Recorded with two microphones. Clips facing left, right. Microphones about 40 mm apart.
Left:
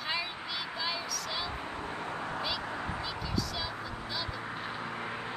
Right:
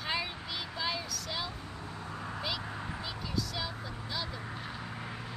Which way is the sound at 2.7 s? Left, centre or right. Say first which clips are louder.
Left 4 dB; left.